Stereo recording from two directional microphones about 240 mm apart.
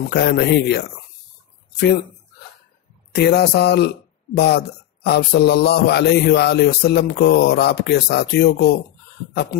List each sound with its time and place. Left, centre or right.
0.1 s a man's voice: left
3.2 s a man's voice: left